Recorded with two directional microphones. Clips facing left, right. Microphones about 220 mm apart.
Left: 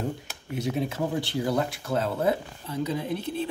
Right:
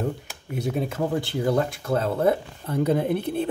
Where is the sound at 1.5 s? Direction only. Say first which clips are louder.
Right 5 dB; 55° right (ahead or behind).